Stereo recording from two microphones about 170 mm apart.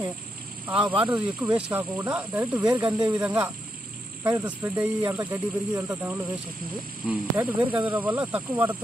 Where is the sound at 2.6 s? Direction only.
25° right (ahead or behind).